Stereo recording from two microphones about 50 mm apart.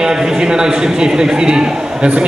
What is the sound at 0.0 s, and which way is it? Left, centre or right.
A man's voice, centre.